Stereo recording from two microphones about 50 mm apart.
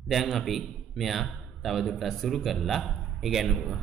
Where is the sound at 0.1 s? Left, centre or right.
Centre.